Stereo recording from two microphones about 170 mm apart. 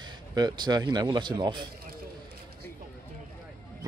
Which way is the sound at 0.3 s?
25° right (ahead or behind).